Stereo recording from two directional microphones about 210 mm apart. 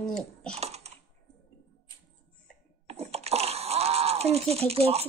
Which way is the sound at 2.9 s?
30° right (ahead or behind).